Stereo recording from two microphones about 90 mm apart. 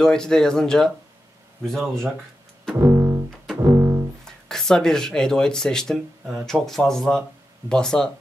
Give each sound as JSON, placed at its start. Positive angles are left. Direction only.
{"t": 0.0, "sound": "speech", "side_deg": 5}
{"t": 2.8, "sound": "double bass", "side_deg": -30}
{"t": 4.2, "sound": "speech", "side_deg": 5}